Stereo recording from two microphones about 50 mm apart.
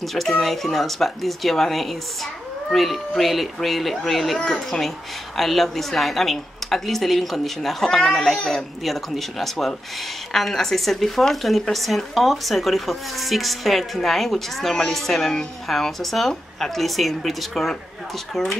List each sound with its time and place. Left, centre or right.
0.0 s speech: centre